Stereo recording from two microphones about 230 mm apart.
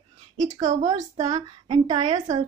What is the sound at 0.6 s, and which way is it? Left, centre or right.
Speech, right.